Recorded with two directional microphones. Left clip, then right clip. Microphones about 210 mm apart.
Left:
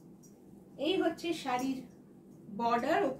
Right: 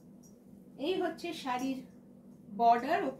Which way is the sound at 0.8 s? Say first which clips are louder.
Left 2 dB; 15° left (ahead or behind).